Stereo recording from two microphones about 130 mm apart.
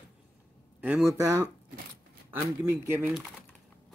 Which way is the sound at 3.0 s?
Centre (ahead or behind).